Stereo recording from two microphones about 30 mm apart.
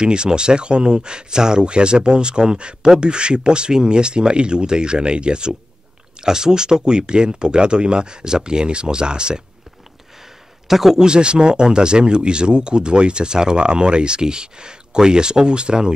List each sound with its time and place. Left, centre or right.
0.0 s speech: right
10.7 s speech: centre
11.0 s speech: right